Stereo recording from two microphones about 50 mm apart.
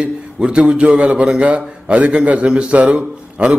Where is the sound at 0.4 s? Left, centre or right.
Right.